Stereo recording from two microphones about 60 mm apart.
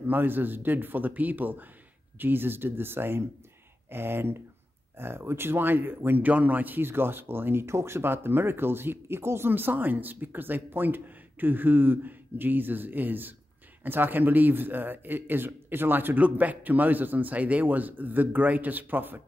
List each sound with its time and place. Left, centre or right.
0.0 s speech: right